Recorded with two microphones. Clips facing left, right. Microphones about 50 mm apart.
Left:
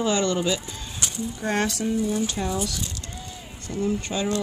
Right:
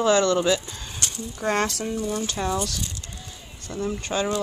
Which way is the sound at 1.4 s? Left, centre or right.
Right.